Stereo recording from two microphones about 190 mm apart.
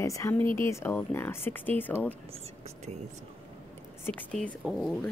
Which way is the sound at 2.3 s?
30° right (ahead or behind).